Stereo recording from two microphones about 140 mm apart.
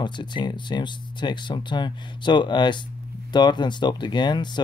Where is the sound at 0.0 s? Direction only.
35° left (ahead or behind).